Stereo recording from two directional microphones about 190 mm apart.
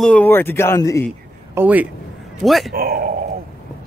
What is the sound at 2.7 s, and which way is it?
Speech, 50° right (ahead or behind).